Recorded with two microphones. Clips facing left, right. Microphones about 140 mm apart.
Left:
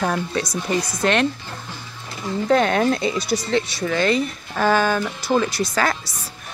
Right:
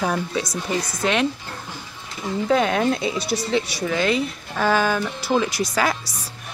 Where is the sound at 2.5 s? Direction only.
5° right (ahead or behind).